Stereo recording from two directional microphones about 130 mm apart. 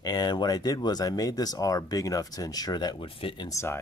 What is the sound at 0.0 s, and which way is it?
Speech, 30° left (ahead or behind).